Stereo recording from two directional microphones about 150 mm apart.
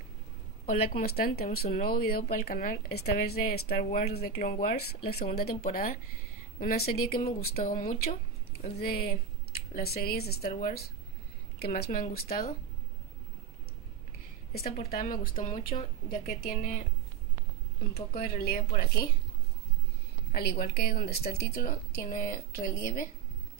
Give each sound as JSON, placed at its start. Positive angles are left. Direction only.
{"t": 0.7, "sound": "a woman's voice", "side_deg": 80}
{"t": 7.6, "sound": "a woman's voice", "side_deg": 70}
{"t": 8.7, "sound": "speech", "side_deg": 90}
{"t": 11.6, "sound": "a woman's voice", "side_deg": 90}
{"t": 14.5, "sound": "a woman's voice", "side_deg": 90}
{"t": 15.7, "sound": "speech", "side_deg": 35}
{"t": 16.3, "sound": "a woman's voice", "side_deg": 75}
{"t": 18.1, "sound": "speech", "side_deg": 90}
{"t": 20.3, "sound": "a woman's voice", "side_deg": 90}